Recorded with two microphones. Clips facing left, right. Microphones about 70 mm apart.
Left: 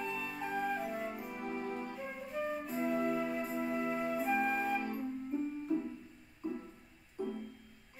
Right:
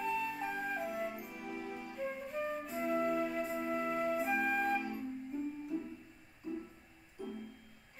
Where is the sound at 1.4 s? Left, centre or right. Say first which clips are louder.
Left 4 dB; left.